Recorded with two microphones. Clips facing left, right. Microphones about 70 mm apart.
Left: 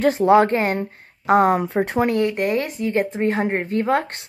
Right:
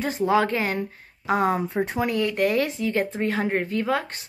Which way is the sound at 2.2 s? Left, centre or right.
Left.